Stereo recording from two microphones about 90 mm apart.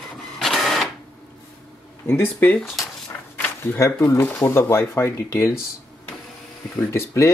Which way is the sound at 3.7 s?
35° left (ahead or behind).